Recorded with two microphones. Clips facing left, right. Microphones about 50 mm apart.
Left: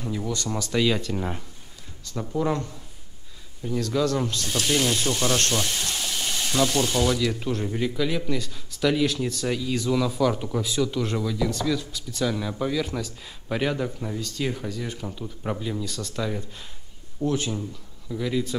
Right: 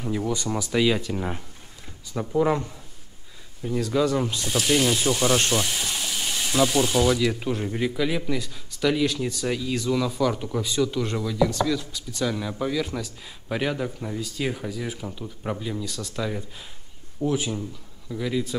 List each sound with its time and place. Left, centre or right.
0.0 s speech: centre